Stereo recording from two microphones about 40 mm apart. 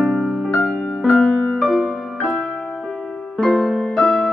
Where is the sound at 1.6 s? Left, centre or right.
Centre.